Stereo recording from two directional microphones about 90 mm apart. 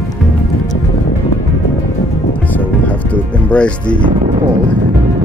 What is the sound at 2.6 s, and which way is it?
Music, 15° left (ahead or behind).